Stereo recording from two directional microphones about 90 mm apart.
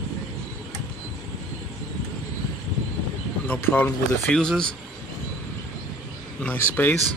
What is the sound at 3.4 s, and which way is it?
Speech, 20° left (ahead or behind).